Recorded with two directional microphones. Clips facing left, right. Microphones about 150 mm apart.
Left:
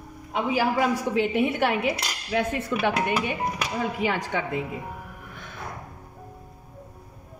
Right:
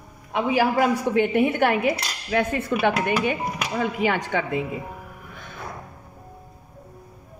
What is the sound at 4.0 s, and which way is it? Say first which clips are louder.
Speech: right 3 dB; 75° right (ahead or behind).